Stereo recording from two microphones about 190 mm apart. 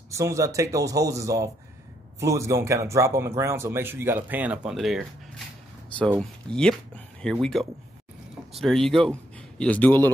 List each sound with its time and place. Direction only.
0.1 s speech: 15° right (ahead or behind); by 5.0 s centre (ahead or behind)
5.9 s a sound: 5° left (ahead or behind)
6.5 s speech: 5° left (ahead or behind)